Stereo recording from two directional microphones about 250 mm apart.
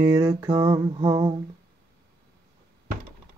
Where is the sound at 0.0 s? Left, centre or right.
Centre.